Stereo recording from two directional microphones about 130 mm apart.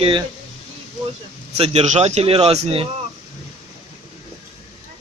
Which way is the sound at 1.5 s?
55° right (ahead or behind).